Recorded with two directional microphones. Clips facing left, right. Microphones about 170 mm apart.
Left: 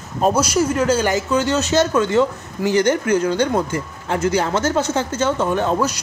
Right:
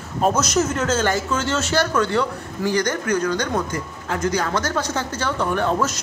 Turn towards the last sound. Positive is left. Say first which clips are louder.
# left 2 dB
turn(degrees=15)  # may be behind; listen again after turning